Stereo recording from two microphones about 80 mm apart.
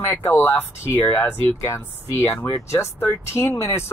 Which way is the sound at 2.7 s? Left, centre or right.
Left.